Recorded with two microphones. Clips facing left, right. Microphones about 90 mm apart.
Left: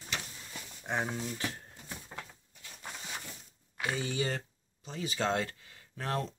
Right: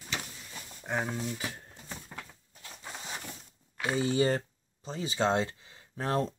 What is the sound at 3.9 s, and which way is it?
Speech, 35° right (ahead or behind).